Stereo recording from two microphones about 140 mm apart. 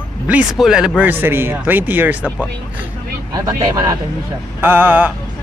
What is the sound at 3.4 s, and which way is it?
Speech, 25° right (ahead or behind).